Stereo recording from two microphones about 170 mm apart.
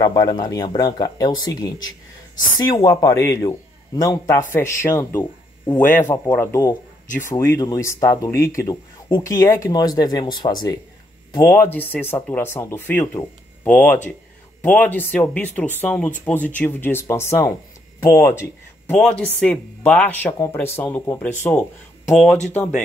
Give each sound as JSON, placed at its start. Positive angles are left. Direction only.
{"t": 0.0, "sound": "speech", "side_deg": 25}
{"t": 18.9, "sound": "speech", "side_deg": 5}